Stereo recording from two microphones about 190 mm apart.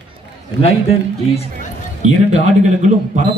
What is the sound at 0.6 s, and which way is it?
Speech, 35° left (ahead or behind).